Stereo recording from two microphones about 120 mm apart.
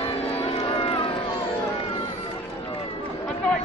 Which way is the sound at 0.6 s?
50° left (ahead or behind).